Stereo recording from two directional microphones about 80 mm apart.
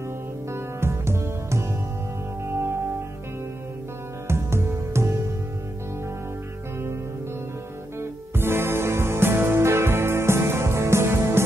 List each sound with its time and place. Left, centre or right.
0.5 s music: right
4.3 s music: right
8.0 s music: right